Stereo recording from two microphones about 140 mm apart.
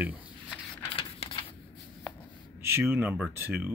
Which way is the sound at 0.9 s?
40° left (ahead or behind).